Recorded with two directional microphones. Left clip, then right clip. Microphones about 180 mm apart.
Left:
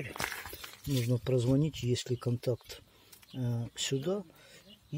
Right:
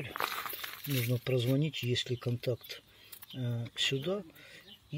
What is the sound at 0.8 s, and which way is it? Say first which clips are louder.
Speech: left 2 dB; 20° left (ahead or behind).